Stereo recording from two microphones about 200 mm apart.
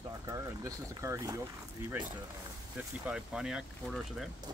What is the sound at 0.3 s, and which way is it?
Speech, 15° right (ahead or behind).